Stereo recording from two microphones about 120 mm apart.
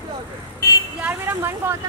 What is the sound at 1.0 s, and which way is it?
Speech, 20° right (ahead or behind).